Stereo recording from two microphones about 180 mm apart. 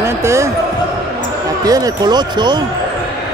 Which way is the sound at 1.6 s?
20° right (ahead or behind).